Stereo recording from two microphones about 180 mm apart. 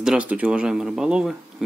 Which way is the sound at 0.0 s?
5° right (ahead or behind).